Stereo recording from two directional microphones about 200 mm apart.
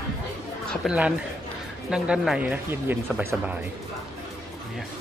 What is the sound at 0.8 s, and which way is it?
Speech, 5° right (ahead or behind).